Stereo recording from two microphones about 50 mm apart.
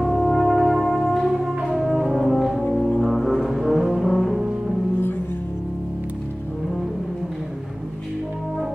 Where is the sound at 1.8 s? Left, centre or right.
Centre.